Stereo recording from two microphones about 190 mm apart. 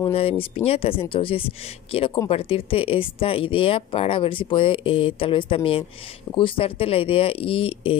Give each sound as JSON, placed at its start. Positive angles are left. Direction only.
{"t": 0.0, "sound": "speech", "side_deg": 30}